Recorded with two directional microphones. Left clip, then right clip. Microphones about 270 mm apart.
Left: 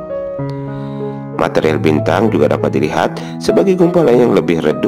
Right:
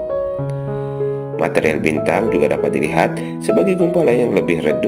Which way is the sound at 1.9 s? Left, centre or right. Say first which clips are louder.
Left 3 dB; left.